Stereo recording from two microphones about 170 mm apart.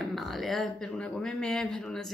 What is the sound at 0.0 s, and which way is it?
Speech, centre (ahead or behind).